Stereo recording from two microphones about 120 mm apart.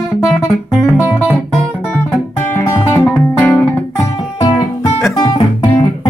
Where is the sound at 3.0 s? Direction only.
5° left (ahead or behind).